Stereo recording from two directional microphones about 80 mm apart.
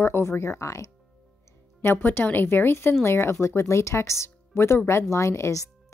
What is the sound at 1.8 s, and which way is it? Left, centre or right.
A woman's voice, left.